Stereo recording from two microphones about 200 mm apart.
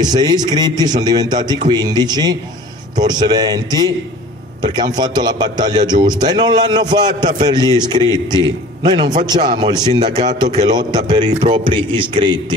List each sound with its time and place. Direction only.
0.0 s a man's voice: 20° right (ahead or behind)